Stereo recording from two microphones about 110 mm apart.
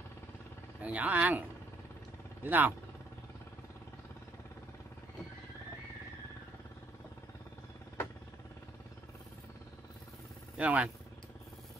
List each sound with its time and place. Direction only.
0.8 s speech: 15° right (ahead or behind)
2.4 s speech: 15° right (ahead or behind)
10.6 s speech: 15° right (ahead or behind)